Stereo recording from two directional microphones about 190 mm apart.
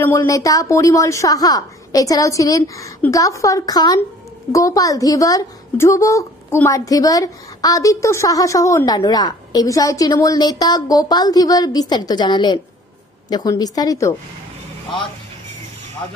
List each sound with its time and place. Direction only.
0.0 s a woman's voice: 10° left (ahead or behind)